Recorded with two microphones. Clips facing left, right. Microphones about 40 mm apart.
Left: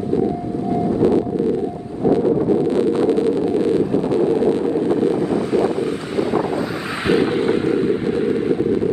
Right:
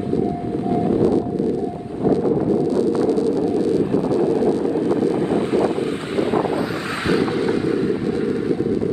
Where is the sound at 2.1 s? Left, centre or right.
Left.